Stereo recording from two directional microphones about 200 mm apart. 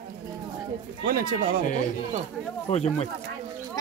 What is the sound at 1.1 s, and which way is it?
Speech, 45° right (ahead or behind).